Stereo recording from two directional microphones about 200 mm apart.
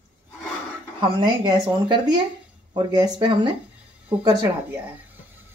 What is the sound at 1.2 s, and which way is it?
Speech, 20° right (ahead or behind).